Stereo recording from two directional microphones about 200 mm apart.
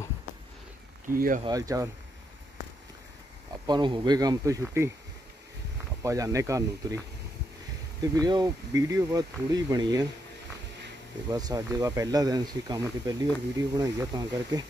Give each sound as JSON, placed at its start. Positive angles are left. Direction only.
{"t": 1.0, "sound": "speech", "side_deg": -45}
{"t": 1.4, "sound": "speech", "side_deg": -15}
{"t": 3.6, "sound": "speech", "side_deg": -20}
{"t": 6.0, "sound": "speech", "side_deg": -15}
{"t": 8.0, "sound": "speech", "side_deg": -20}
{"t": 11.2, "sound": "speech", "side_deg": -20}